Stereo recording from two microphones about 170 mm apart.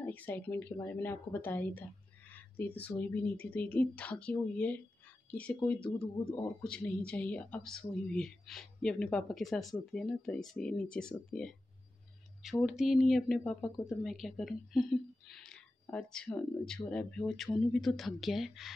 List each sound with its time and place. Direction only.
0.0 s a woman's voice: 10° left (ahead or behind)